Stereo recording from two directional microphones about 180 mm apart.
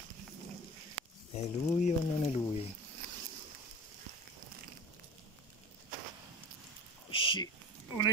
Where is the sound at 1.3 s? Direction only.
40° left (ahead or behind).